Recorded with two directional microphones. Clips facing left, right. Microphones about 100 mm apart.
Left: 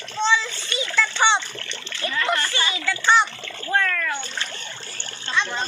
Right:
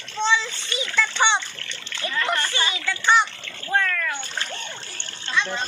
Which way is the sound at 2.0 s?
20° right (ahead or behind).